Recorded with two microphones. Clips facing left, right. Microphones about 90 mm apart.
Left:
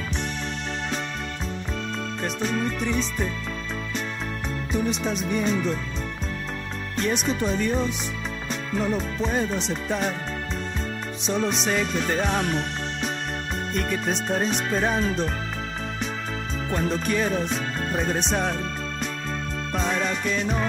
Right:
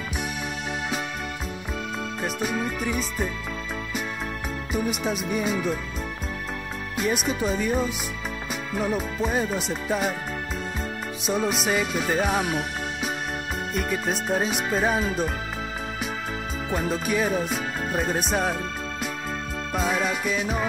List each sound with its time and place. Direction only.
2.2 s speech: 5° right (ahead or behind)
4.7 s music: 5° right (ahead or behind)
7.0 s music: 5° right (ahead or behind)
8.5 s speech: 5° right (ahead or behind)
11.2 s music: 5° right (ahead or behind)
16.7 s music: 5° right (ahead or behind)
19.7 s music: 5° right (ahead or behind)